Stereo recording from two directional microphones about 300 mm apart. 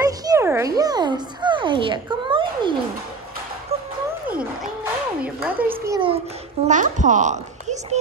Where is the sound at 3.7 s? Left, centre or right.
Right.